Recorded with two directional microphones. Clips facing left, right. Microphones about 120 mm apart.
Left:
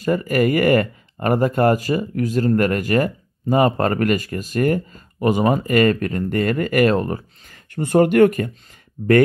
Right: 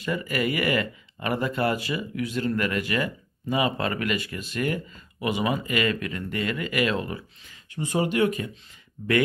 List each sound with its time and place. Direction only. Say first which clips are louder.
0.0 s speech: left 9 dB; 45° left (ahead or behind)